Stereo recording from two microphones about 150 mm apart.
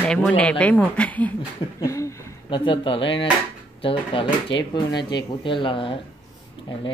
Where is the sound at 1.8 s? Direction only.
20° left (ahead or behind).